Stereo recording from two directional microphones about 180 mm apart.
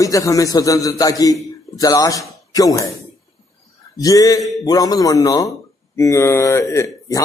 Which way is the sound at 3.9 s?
20° left (ahead or behind).